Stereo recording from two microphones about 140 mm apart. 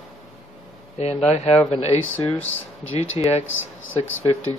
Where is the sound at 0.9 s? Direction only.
50° left (ahead or behind).